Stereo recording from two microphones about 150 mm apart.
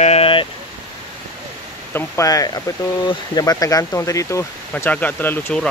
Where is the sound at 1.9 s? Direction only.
20° left (ahead or behind).